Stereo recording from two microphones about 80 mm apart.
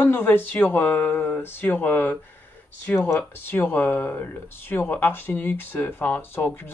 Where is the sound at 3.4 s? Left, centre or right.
Left.